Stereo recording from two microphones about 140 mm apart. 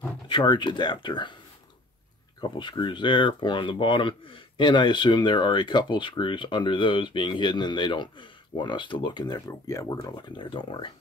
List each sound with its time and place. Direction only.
0.3 s speech: 35° left (ahead or behind)
2.4 s speech: 35° left (ahead or behind)